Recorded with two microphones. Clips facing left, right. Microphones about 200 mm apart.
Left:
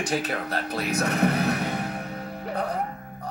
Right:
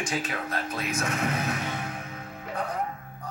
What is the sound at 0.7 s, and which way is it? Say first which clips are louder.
Music: left 7 dB; 40° left (ahead or behind).